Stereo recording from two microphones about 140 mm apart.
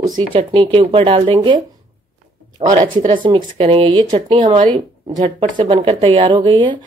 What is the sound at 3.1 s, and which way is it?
Speech, 35° right (ahead or behind).